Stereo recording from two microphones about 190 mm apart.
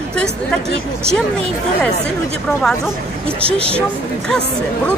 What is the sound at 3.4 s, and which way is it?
Speech, 30° right (ahead or behind).